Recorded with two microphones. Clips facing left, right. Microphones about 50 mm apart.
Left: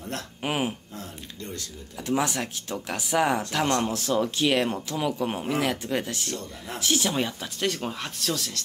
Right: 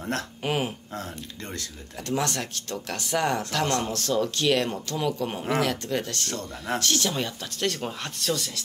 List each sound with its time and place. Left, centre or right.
0.4 s speech: centre
2.0 s speech: centre
7.5 s speech: centre